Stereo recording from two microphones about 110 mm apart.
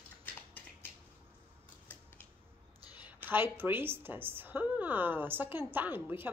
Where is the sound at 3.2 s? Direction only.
20° right (ahead or behind).